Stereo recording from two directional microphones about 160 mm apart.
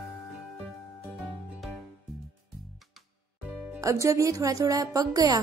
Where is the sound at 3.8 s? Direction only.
20° right (ahead or behind).